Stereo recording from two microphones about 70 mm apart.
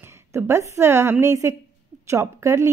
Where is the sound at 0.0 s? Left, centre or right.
Right.